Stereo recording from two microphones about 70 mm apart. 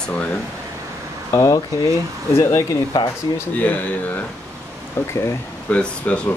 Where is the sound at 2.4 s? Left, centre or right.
Left.